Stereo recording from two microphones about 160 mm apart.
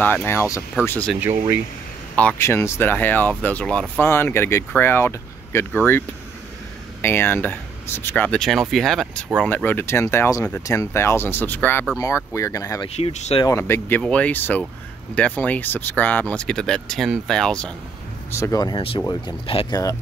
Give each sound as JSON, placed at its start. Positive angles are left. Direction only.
{"t": 0.0, "sound": "speech", "side_deg": 10}
{"t": 2.1, "sound": "speech", "side_deg": 10}
{"t": 9.5, "sound": "speech", "side_deg": 10}
{"t": 12.8, "sound": "speech", "side_deg": 40}
{"t": 13.5, "sound": "speech", "side_deg": 15}
{"t": 18.3, "sound": "speech", "side_deg": 20}
{"t": 18.8, "sound": "speech", "side_deg": 35}